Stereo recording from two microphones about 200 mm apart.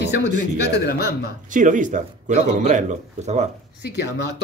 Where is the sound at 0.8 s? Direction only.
50° left (ahead or behind).